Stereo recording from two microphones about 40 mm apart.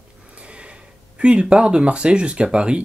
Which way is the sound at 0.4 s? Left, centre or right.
Right.